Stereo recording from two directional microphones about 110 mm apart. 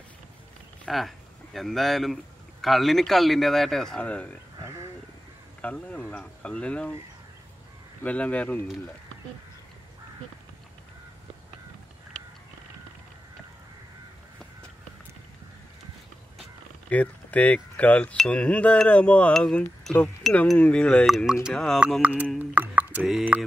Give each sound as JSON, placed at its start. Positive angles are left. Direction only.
{"t": 0.8, "sound": "speech", "side_deg": 0}
{"t": 5.6, "sound": "wind chime", "side_deg": 10}
{"t": 8.0, "sound": "wind chime", "side_deg": 15}
{"t": 16.9, "sound": "speech", "side_deg": 15}
{"t": 18.1, "sound": "wind chime", "side_deg": 10}
{"t": 21.1, "sound": "speech", "side_deg": -5}
{"t": 22.5, "sound": "a sound", "side_deg": -15}
{"t": 23.3, "sound": "speech", "side_deg": -15}